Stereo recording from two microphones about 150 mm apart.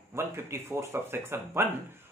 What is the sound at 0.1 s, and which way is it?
Speech, 15° right (ahead or behind).